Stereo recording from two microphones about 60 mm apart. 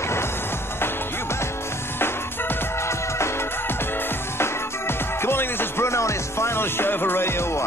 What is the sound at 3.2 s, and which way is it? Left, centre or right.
Music, left.